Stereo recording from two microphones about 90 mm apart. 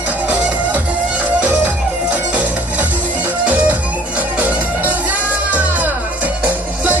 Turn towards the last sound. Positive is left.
turn(degrees=-15)  # may be behind; listen again after turning